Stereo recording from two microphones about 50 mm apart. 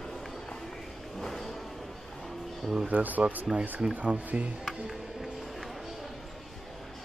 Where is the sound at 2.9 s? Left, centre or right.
Right.